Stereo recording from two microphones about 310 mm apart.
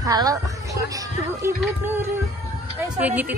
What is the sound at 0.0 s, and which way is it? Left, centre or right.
A woman's voice, centre.